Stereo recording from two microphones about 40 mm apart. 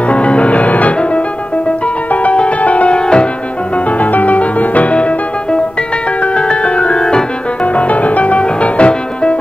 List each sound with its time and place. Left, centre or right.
0.1 s music: left
2.3 s music: left
3.7 s music: left
7.6 s music: left